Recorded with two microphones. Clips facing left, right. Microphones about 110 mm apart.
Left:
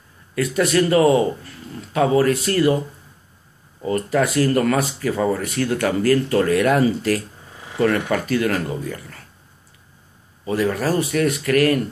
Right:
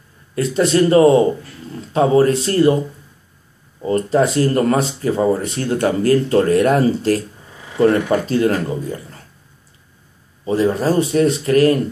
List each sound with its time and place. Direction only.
0.3 s speech: 25° right (ahead or behind)
3.8 s speech: 25° right (ahead or behind)
10.4 s speech: 25° right (ahead or behind)